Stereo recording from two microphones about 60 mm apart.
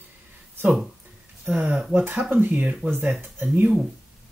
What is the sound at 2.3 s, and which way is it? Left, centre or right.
Speech, right.